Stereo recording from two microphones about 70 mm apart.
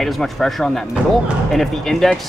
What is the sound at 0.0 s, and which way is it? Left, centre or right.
Speech, centre.